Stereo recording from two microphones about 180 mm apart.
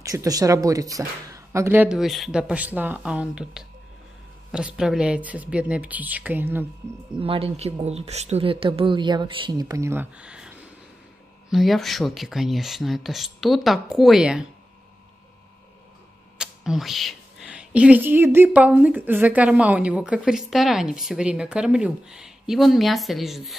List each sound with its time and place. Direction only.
0.0 s speech: 20° right (ahead or behind)
7.2 s speech: 30° right (ahead or behind); by 10.5 s 5° right (ahead or behind)
11.5 s speech: centre (ahead or behind)
16.3 s speech: centre (ahead or behind)